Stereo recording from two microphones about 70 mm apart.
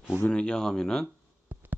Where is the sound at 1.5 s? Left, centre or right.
Right.